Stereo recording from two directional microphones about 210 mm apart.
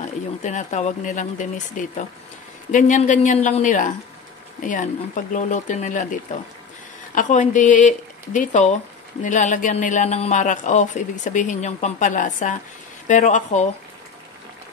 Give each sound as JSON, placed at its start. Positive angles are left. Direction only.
{"t": 0.4, "sound": "speech", "side_deg": 35}
{"t": 7.2, "sound": "speech", "side_deg": 35}